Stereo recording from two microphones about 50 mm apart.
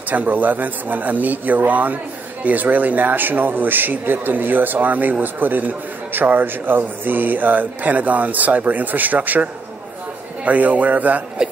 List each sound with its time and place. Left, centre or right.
0.1 s a man's voice: right